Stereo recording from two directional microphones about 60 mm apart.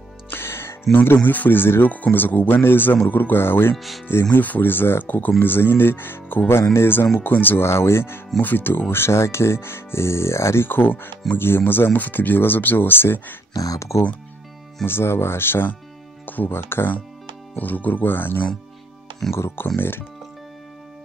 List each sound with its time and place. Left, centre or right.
0.3 s music: left
1.0 s speech: left
3.7 s speech: centre
4.3 s speech: left
7.6 s speech: left
8.9 s speech: left
13.5 s speech: left
13.7 s speech: left
14.9 s speech: left
17.6 s speech: left